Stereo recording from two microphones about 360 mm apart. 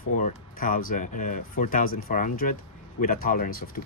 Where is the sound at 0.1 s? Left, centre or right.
Left.